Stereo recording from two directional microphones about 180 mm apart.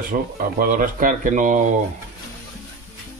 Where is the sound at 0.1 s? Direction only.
50° right (ahead or behind).